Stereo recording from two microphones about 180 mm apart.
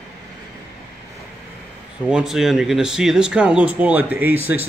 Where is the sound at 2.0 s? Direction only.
5° right (ahead or behind).